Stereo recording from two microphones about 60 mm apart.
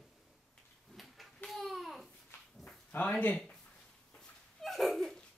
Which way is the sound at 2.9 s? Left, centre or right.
Left.